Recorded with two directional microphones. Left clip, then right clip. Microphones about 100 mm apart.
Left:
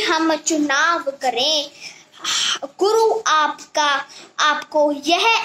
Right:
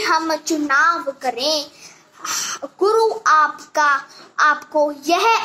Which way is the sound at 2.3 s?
45° left (ahead or behind).